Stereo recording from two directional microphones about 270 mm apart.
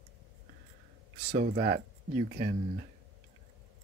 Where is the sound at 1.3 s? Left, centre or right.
Right.